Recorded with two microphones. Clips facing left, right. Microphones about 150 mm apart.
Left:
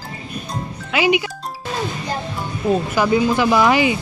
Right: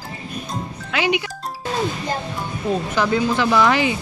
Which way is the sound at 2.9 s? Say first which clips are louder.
Left 1 dB; 10° left (ahead or behind).